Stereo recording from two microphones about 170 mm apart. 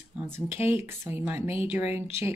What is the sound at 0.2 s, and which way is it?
A woman's voice, 10° right (ahead or behind).